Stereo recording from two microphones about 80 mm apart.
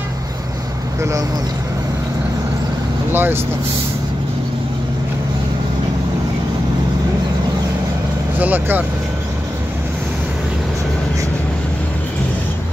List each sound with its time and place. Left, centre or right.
3.1 s speech: right
8.4 s speech: right